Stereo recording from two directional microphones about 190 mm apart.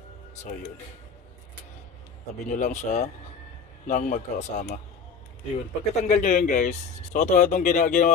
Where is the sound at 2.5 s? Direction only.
40° left (ahead or behind).